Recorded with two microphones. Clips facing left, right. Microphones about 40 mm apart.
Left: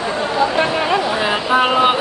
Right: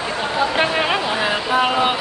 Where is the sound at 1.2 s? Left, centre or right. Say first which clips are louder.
Left 3 dB; left.